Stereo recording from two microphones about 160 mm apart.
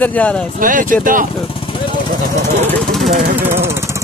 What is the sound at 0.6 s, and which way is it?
Speech, 60° right (ahead or behind).